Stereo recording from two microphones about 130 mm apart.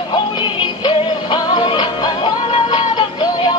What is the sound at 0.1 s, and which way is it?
Music, 35° left (ahead or behind).